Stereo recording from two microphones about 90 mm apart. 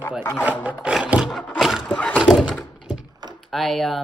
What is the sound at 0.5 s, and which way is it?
Speech, 15° right (ahead or behind).